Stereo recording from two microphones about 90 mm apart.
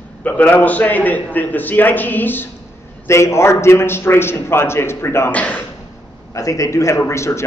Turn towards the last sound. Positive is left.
turn(degrees=30)  # may be behind; listen again after turning